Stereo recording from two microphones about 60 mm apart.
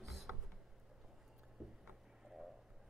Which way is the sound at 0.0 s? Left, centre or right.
Centre.